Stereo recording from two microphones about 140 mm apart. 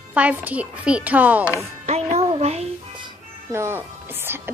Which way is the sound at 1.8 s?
50° right (ahead or behind).